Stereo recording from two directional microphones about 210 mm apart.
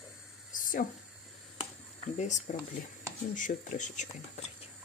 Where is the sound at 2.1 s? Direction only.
35° left (ahead or behind).